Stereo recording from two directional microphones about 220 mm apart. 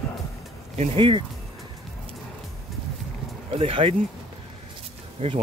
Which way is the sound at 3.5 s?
25° right (ahead or behind).